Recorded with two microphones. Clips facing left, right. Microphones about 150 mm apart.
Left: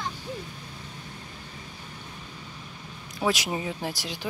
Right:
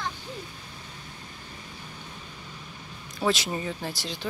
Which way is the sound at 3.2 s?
10° left (ahead or behind).